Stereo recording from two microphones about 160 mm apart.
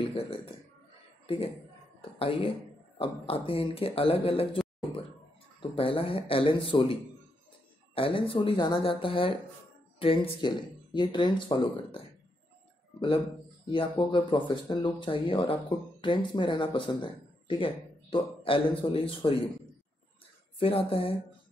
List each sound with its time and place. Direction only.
0.1 s speech: 35° left (ahead or behind)
5.6 s speech: 35° left (ahead or behind)
13.7 s speech: 30° left (ahead or behind)
20.5 s speech: 35° left (ahead or behind)